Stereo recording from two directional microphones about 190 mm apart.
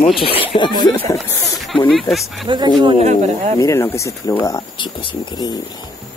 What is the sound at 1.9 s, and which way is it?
Speech, centre (ahead or behind).